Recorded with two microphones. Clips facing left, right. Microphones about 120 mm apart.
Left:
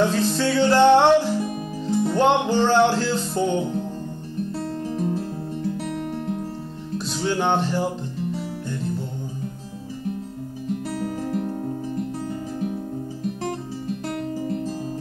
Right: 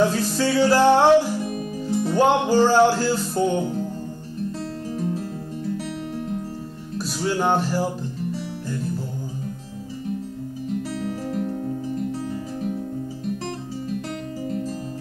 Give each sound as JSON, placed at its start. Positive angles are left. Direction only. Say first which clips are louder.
{"t": 0.0, "sound": "music", "louder": "even", "side_deg": -10}
{"t": 4.8, "sound": "music", "louder": "left 1 dB", "side_deg": 40}
{"t": 7.2, "sound": "music", "louder": "even", "side_deg": -5}
{"t": 11.0, "sound": "music", "louder": "left 1 dB", "side_deg": 45}